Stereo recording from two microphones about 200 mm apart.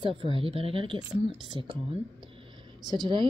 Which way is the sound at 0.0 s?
25° right (ahead or behind).